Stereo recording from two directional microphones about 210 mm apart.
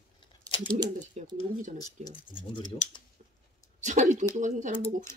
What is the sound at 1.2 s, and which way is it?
Speech, 30° right (ahead or behind).